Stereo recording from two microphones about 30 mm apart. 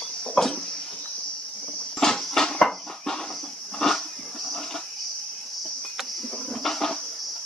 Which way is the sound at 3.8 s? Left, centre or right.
Centre.